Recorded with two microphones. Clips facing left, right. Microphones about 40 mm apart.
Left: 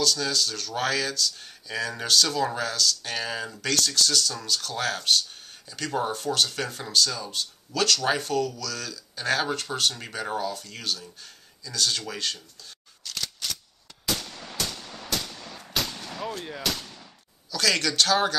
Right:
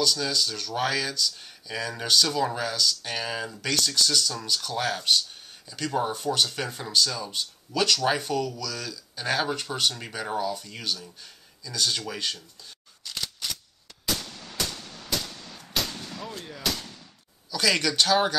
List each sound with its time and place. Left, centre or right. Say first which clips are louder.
0.0 s speech: even; centre
6.2 s speech: even; centre
13.0 s a sound: even; centre
15.1 s a sound: right 1 dB; centre
16.3 s speech: left 5 dB; left
17.5 s speech: even; centre